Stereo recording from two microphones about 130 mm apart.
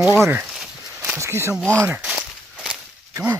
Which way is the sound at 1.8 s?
10° right (ahead or behind).